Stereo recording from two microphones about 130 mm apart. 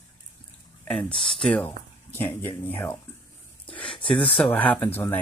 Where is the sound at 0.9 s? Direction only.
5° left (ahead or behind).